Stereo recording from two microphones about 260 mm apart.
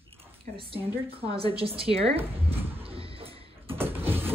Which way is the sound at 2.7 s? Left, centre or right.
Right.